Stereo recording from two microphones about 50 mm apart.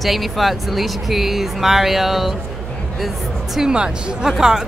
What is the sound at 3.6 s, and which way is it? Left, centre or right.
Speech, centre.